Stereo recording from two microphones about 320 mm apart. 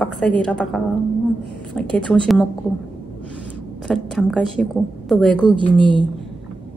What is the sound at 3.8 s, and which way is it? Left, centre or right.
A woman's voice, centre.